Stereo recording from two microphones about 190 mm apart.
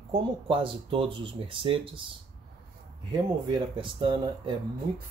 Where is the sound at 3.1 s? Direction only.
25° right (ahead or behind).